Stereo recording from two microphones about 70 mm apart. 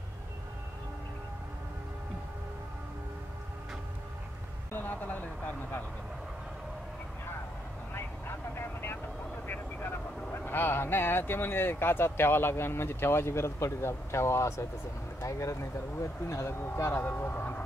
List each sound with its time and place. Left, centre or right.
4.7 s a sound: left
7.9 s vehicle: left
9.5 s speech: left
17.0 s speech: left